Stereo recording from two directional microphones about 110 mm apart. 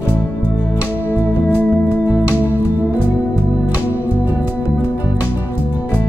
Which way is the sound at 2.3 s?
15° right (ahead or behind).